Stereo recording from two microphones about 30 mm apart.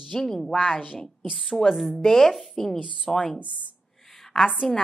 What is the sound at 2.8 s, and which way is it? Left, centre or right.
Speech, right.